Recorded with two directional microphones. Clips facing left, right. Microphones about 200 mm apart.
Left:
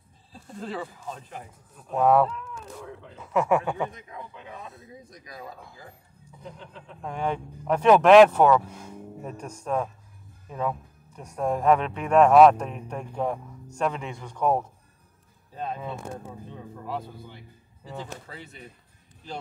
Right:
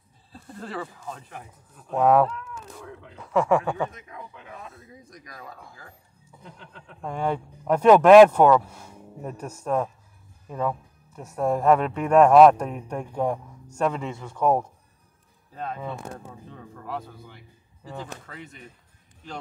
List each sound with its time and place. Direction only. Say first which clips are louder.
0.3 s speech: left 1 dB; 10° left (ahead or behind)
2.0 s speech: right 1 dB; centre (ahead or behind)
4.5 s a sound: left 1 dB; 25° left (ahead or behind)
7.0 s a man's voice: right 2 dB; 5° right (ahead or behind)
10.5 s speech: right 2 dB; 5° left (ahead or behind)
11.1 s a man's voice: right 2 dB; 5° right (ahead or behind)
15.5 s speech: left 1 dB; 25° left (ahead or behind)
15.8 s speech: even; centre (ahead or behind)
18.2 s speech: right 1 dB; 35° left (ahead or behind)